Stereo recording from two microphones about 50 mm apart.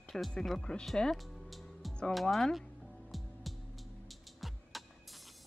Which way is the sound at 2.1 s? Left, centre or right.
Centre.